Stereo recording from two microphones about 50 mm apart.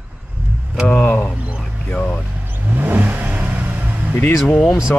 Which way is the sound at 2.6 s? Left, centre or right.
Right.